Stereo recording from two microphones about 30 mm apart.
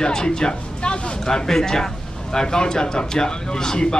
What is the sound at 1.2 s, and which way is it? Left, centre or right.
Speech, centre.